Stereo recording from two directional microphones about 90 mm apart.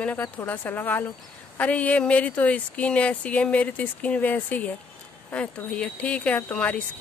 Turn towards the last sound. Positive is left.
turn(degrees=15)  # may be behind; listen again after turning